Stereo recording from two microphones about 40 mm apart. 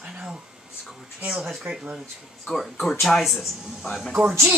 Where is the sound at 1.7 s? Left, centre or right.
Right.